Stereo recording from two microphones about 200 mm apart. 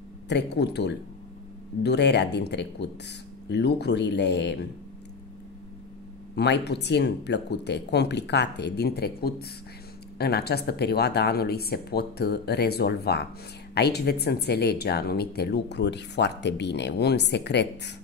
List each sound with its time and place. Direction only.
0.3 s speech: 60° left (ahead or behind)
6.3 s speech: 55° left (ahead or behind)